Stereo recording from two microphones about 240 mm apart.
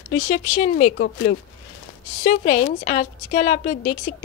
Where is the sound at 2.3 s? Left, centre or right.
Left.